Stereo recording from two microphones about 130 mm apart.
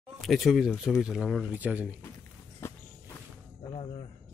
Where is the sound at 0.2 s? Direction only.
Centre (ahead or behind).